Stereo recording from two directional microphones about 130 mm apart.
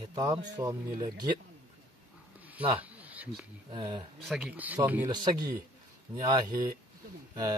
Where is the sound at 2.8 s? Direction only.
10° right (ahead or behind).